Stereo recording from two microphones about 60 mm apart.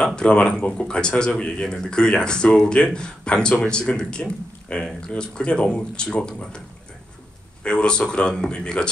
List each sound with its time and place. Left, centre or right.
0.0 s speech: centre
7.6 s speech: centre